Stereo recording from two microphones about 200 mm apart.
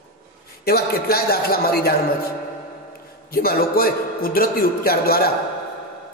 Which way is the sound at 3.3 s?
45° left (ahead or behind).